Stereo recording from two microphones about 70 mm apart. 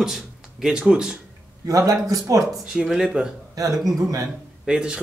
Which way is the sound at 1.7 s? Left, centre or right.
Right.